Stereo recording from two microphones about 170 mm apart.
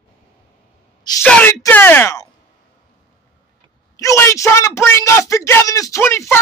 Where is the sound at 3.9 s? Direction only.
15° left (ahead or behind).